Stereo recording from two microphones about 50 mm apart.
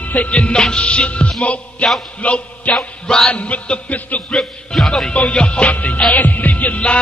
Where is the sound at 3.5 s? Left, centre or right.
Left.